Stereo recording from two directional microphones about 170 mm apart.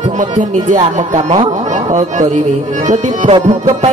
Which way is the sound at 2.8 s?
45° right (ahead or behind).